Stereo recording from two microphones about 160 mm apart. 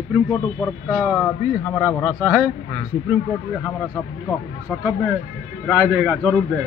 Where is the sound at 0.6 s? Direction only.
5° left (ahead or behind).